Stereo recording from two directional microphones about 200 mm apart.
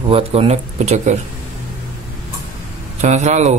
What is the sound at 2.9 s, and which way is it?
Speech, 35° right (ahead or behind).